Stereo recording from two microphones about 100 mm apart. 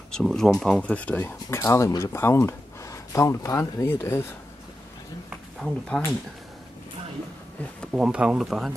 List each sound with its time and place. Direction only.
0.1 s speech: 5° left (ahead or behind); by 4.3 s 25° left (ahead or behind)
5.6 s speech: 5° left (ahead or behind)
7.9 s speech: 10° right (ahead or behind)